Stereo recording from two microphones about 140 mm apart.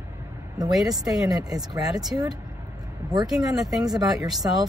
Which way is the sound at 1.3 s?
25° right (ahead or behind).